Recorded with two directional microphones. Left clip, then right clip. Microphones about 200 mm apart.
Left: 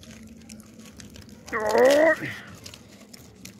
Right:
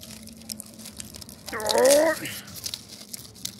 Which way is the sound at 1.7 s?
45° left (ahead or behind).